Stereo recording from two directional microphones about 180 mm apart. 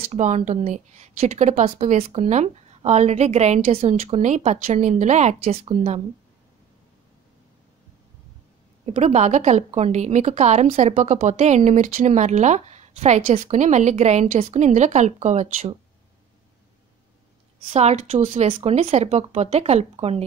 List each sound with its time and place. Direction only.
0.1 s a woman's voice: 40° right (ahead or behind)
8.8 s a woman's voice: 40° right (ahead or behind)
17.7 s a woman's voice: 35° right (ahead or behind)